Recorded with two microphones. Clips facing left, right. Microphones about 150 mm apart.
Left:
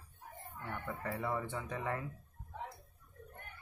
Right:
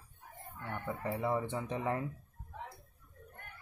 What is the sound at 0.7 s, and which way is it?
Speech, 20° right (ahead or behind).